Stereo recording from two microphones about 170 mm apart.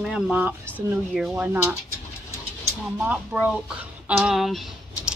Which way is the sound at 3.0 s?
5° right (ahead or behind).